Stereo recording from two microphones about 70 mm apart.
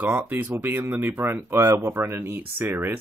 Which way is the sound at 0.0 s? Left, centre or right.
Right.